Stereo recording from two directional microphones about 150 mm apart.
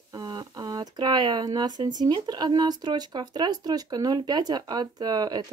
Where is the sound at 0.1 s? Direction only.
25° right (ahead or behind).